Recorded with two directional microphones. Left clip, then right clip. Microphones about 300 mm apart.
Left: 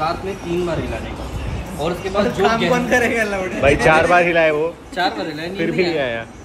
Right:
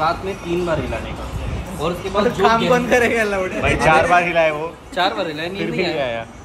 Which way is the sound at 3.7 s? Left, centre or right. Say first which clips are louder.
Even; centre.